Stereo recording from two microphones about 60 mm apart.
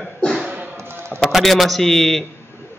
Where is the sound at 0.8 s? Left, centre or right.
Right.